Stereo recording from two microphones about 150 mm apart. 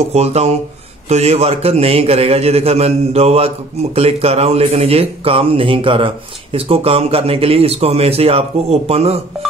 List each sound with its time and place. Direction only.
0.1 s a man's voice: 45° right (ahead or behind)